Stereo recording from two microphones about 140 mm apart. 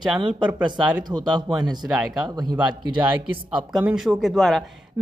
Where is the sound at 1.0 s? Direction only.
30° right (ahead or behind).